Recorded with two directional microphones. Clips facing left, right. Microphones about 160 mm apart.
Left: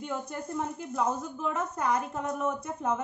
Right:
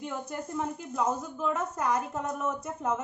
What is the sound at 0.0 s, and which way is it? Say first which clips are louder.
Speech: left 1 dB; centre (ahead or behind).